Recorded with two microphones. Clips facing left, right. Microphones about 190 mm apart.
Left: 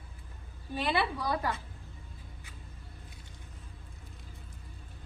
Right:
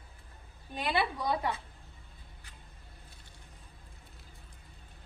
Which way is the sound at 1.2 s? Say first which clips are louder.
Even; 20° right (ahead or behind).